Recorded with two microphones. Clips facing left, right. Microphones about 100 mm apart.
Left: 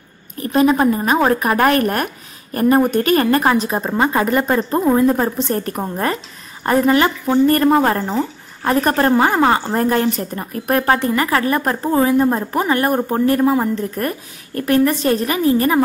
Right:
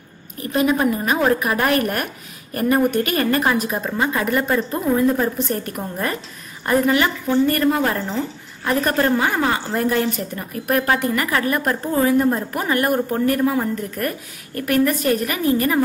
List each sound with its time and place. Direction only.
0.5 s a woman's voice: 30° left (ahead or behind)